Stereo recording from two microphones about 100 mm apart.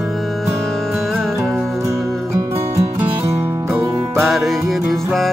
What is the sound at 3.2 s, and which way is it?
Music, 30° right (ahead or behind).